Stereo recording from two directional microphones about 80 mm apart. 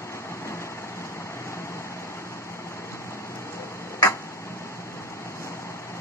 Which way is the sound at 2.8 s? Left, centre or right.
Left.